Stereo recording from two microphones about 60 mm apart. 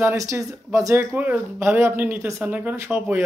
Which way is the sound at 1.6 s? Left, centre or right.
Right.